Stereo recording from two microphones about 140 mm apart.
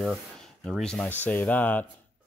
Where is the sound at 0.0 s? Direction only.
Centre (ahead or behind).